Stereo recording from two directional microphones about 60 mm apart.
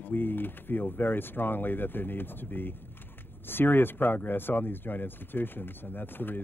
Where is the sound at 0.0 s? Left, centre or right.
Left.